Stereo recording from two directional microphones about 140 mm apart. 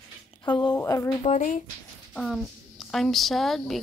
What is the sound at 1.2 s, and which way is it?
Speech, 60° left (ahead or behind).